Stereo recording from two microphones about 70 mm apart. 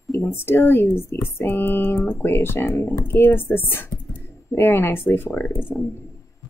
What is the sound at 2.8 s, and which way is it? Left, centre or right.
Speech, left.